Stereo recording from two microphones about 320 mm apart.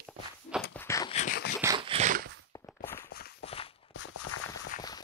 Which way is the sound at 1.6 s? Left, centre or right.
Centre.